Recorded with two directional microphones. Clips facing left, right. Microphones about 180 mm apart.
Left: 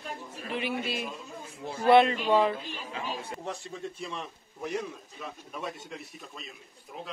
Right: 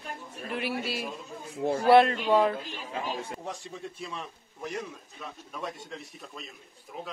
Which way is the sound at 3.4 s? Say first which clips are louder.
Left 1 dB; 15° right (ahead or behind).